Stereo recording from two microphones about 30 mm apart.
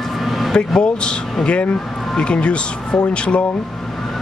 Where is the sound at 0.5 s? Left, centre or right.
Left.